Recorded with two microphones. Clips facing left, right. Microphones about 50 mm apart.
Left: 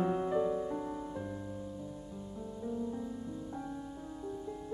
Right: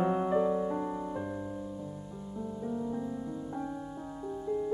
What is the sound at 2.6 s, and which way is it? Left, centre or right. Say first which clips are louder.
Music: right 2 dB; right.